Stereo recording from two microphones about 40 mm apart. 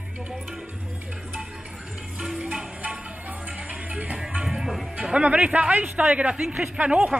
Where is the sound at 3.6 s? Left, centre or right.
Right.